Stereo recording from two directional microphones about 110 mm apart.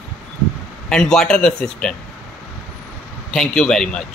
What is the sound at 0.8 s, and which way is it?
A man's voice, 5° left (ahead or behind).